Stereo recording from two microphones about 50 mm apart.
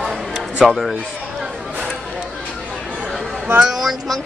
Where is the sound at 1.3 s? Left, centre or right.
Centre.